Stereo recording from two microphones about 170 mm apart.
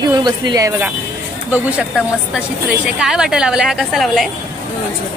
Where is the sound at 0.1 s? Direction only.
25° right (ahead or behind).